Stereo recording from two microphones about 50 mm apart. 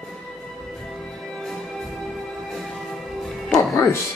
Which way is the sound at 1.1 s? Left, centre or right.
Centre.